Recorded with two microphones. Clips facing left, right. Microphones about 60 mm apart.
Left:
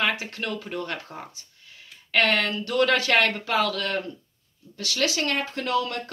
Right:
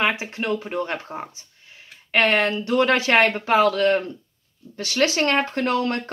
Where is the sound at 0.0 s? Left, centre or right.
Right.